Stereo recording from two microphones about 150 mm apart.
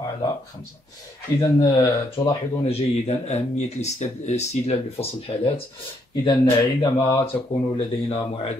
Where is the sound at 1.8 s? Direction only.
35° left (ahead or behind).